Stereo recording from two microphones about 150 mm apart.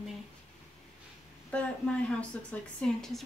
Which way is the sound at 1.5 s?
10° left (ahead or behind).